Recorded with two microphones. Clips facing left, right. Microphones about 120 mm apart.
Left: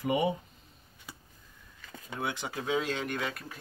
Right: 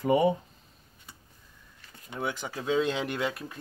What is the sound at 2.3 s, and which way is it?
Speech, 15° left (ahead or behind).